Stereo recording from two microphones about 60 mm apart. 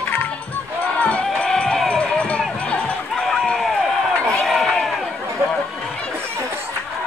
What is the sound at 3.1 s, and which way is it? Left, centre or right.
Run, centre.